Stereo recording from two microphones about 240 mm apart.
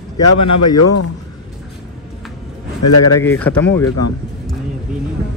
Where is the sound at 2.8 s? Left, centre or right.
Left.